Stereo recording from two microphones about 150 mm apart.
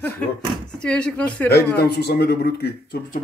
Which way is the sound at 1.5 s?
90° left.